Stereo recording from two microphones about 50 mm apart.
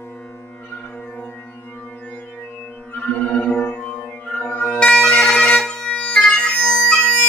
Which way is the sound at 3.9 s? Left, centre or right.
Left.